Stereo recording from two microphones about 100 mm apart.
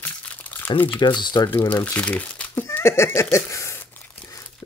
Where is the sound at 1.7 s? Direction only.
15° left (ahead or behind).